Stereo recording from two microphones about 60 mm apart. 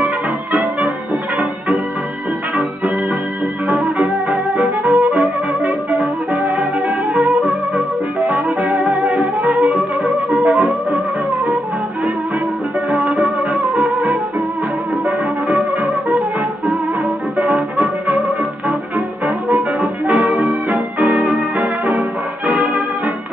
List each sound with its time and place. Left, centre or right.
4.0 s music: centre
5.9 s music: centre
10.3 s music: centre
13.1 s music: centre
19.2 s music: centre
20.2 s music: right
21.1 s music: centre